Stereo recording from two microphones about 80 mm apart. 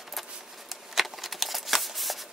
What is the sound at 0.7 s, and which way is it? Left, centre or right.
Shuffling cards, centre.